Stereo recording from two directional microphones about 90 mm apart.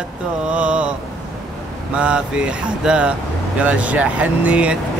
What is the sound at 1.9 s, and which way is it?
Speech, 10° right (ahead or behind).